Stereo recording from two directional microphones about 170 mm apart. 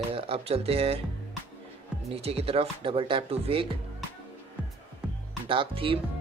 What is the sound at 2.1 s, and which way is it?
Speech, 35° right (ahead or behind).